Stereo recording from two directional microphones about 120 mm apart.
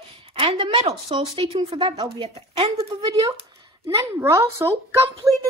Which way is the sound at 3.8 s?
25° right (ahead or behind).